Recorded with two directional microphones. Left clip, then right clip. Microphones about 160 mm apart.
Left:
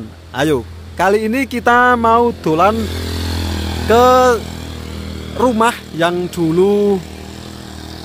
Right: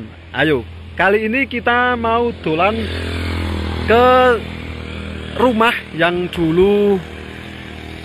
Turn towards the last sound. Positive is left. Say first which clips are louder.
# even
turn(degrees=20)  # may be behind; listen again after turning